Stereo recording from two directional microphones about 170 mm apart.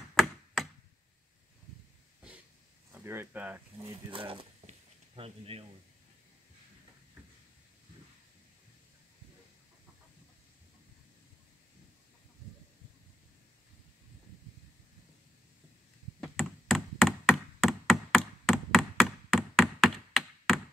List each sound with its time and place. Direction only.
0.1 s chop: centre (ahead or behind)
2.9 s speech: 15° right (ahead or behind)
4.1 s speech: 30° right (ahead or behind)
4.6 s a sound: 35° right (ahead or behind)
16.2 s knock: centre (ahead or behind)